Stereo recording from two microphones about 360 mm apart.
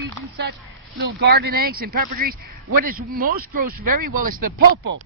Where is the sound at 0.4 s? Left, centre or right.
Right.